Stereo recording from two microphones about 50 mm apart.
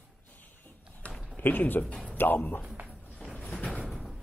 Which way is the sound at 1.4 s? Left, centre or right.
Left.